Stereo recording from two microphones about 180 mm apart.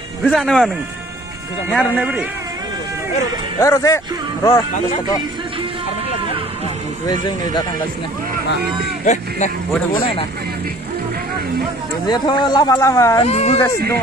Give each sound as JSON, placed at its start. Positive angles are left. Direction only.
{"t": 0.2, "sound": "speech", "side_deg": 0}
{"t": 1.7, "sound": "speech", "side_deg": 5}
{"t": 3.5, "sound": "speech", "side_deg": 15}
{"t": 9.0, "sound": "speech", "side_deg": 40}
{"t": 12.1, "sound": "speech", "side_deg": 25}
{"t": 13.2, "sound": "speech", "side_deg": 35}